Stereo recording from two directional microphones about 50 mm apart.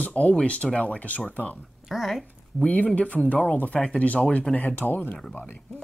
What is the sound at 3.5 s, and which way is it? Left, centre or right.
Speech, left.